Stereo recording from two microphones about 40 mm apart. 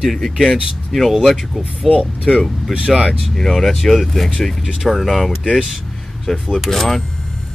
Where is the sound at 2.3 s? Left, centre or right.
Left.